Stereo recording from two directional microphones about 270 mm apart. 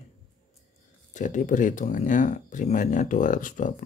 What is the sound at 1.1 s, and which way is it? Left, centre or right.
Speech, left.